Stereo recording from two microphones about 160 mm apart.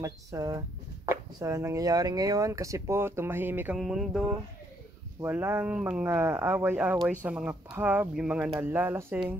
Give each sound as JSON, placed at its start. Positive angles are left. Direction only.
{"t": 0.0, "sound": "speech", "side_deg": -20}
{"t": 5.2, "sound": "speech", "side_deg": -15}